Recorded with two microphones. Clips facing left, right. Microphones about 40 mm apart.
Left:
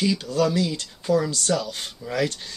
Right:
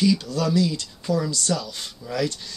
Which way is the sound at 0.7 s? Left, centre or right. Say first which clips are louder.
Left 3 dB; left.